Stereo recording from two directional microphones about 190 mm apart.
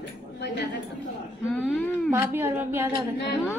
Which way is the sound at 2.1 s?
10° right (ahead or behind).